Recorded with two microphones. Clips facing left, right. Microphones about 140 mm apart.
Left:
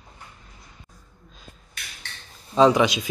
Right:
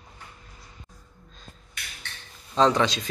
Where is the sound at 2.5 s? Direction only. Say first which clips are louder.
Left 4 dB; 10° left (ahead or behind).